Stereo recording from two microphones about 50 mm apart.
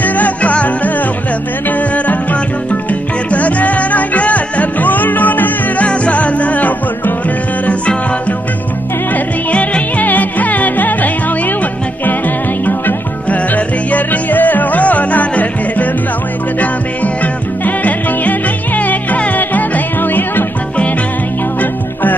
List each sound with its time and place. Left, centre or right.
0.0 s music: left
2.7 s music: left
5.9 s music: left
9.1 s music: left
12.6 s music: left
17.0 s music: left